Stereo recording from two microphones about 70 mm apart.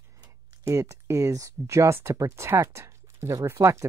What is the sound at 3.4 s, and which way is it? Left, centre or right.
Speech, right.